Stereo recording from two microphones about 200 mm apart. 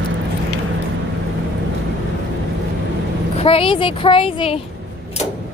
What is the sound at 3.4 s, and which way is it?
Speech, 25° left (ahead or behind).